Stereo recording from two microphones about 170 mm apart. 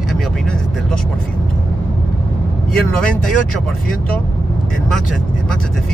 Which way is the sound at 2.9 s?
5° left (ahead or behind).